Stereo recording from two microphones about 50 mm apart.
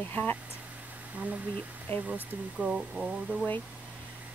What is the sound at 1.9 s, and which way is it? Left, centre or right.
Speech, left.